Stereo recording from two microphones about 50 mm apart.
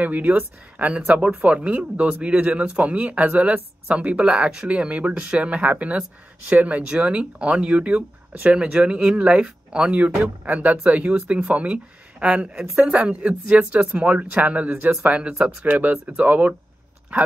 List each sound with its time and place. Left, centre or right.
0.0 s speech: right
14.9 s speech: right